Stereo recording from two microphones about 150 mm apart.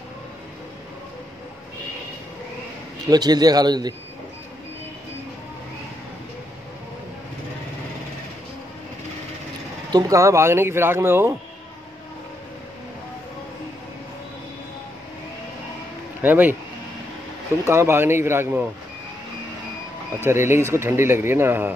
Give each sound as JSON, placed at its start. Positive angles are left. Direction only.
{"t": 3.1, "sound": "a man's voice", "side_deg": -25}
{"t": 9.8, "sound": "speech", "side_deg": -25}
{"t": 16.2, "sound": "speech", "side_deg": -10}
{"t": 17.6, "sound": "speech", "side_deg": -15}
{"t": 20.2, "sound": "speech", "side_deg": -15}